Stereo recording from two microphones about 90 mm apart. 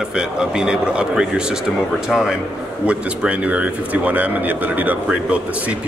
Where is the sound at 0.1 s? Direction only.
10° right (ahead or behind).